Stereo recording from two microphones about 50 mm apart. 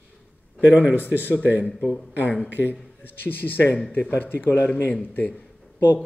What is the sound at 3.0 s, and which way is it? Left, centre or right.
Speech, left.